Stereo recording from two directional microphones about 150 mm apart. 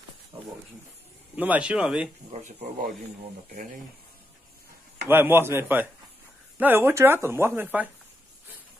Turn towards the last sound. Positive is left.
turn(degrees=-10)  # may be behind; listen again after turning